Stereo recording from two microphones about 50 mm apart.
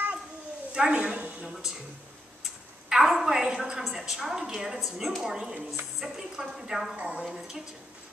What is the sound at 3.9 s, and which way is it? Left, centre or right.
A woman's voice, centre.